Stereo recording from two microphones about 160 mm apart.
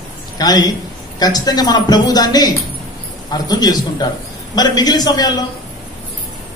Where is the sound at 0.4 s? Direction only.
25° left (ahead or behind).